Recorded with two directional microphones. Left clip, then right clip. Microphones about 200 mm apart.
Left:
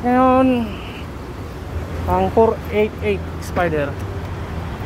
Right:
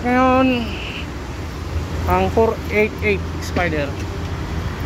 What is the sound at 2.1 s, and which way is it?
Speech, 15° left (ahead or behind).